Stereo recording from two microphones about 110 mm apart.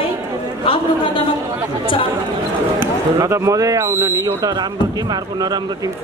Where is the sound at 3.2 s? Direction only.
25° right (ahead or behind).